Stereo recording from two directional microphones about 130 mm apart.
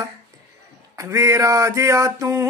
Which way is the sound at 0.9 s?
25° right (ahead or behind).